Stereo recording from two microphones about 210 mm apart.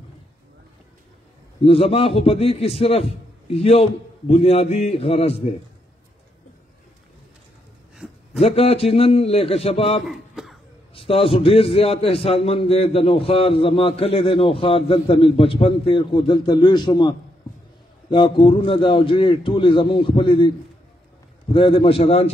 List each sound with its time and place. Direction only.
1.6 s a man's voice: 25° left (ahead or behind)
8.0 s a sound: 5° right (ahead or behind)
8.4 s a man's voice: 30° left (ahead or behind)
10.0 s a sound: centre (ahead or behind)
11.0 s a man's voice: 25° left (ahead or behind)
18.1 s a man's voice: 25° left (ahead or behind)
21.5 s a man's voice: 25° left (ahead or behind)